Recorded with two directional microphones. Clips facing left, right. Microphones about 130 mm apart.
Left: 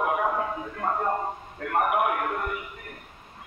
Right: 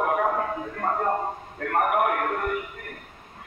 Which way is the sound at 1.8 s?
50° right (ahead or behind).